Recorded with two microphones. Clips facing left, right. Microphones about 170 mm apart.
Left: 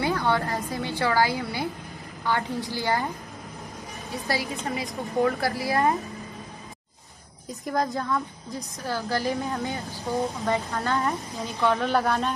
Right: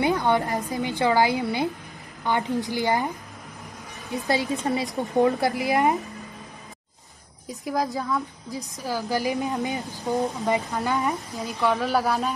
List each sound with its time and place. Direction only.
0.0 s a woman's voice: 20° right (ahead or behind)
4.1 s a woman's voice: 20° right (ahead or behind)
7.4 s speech: centre (ahead or behind)
11.0 s speech: centre (ahead or behind)